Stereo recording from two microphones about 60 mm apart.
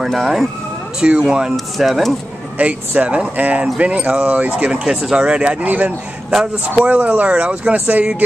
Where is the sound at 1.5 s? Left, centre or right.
Centre.